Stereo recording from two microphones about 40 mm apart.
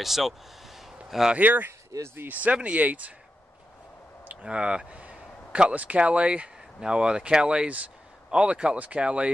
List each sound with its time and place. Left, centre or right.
0.0 s speech: centre
1.4 s speech: right
4.3 s speech: right
6.8 s speech: right